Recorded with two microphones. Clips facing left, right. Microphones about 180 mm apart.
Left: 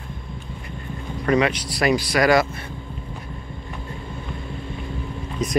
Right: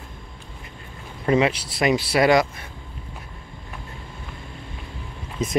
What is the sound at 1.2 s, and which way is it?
Speech, 25° right (ahead or behind).